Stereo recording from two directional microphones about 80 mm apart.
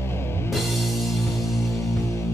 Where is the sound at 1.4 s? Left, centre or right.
Left.